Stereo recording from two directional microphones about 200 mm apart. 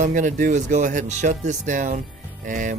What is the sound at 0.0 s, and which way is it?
Speech, 40° right (ahead or behind).